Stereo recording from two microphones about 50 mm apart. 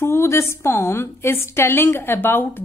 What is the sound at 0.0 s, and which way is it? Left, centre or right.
A woman's voice, left.